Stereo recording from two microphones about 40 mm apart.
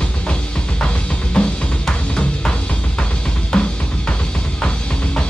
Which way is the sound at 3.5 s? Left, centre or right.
Left.